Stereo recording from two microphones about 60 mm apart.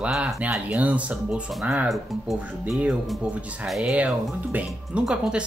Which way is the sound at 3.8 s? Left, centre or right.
Centre.